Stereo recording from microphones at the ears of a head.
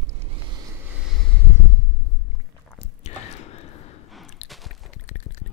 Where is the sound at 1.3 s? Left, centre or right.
Left.